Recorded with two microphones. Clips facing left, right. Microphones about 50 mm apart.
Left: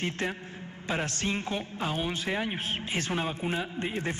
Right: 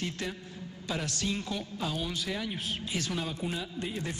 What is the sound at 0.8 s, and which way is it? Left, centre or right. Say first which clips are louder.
A man's voice: left 3 dB; left.